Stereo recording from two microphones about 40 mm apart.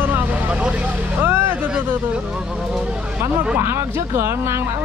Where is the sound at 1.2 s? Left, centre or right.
Right.